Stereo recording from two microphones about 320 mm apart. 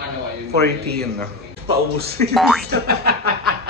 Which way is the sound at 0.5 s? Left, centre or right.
Right.